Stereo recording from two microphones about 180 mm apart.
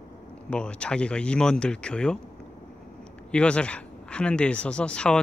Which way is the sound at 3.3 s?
5° left (ahead or behind).